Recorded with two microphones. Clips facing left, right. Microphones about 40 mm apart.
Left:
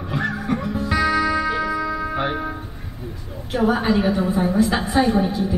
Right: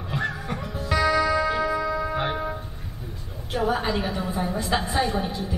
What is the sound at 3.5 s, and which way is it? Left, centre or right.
A woman's voice, left.